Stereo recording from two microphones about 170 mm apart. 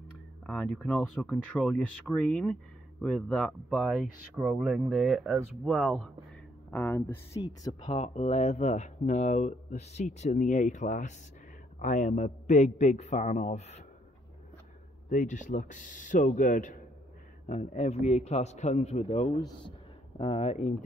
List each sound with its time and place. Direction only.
0.5 s speech: 5° left (ahead or behind)
6.7 s speech: 10° left (ahead or behind)
7.4 s speech: 30° left (ahead or behind)
15.0 s a man's voice: 50° left (ahead or behind)